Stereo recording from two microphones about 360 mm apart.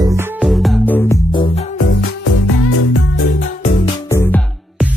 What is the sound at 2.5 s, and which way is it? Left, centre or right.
Music, left.